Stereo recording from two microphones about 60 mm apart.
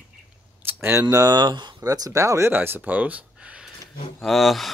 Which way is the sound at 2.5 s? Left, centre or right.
Right.